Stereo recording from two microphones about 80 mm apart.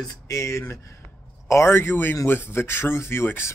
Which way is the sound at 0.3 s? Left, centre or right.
Left.